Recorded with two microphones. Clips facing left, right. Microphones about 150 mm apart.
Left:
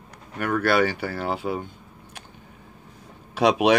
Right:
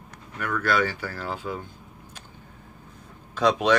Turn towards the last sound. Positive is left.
turn(degrees=80)